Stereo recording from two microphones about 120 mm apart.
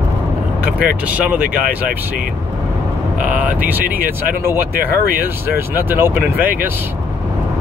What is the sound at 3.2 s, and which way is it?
Speech, 10° right (ahead or behind).